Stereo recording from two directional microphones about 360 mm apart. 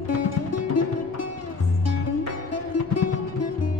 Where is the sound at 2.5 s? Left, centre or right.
Left.